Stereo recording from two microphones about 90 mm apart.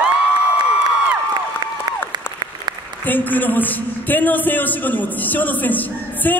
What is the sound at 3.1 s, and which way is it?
A man's voice, 20° left (ahead or behind).